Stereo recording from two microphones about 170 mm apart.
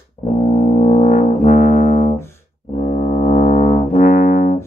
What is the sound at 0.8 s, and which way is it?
Brass instrument, 50° left (ahead or behind).